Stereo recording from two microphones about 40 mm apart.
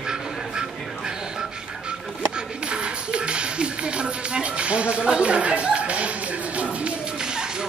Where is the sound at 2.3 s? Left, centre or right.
Right.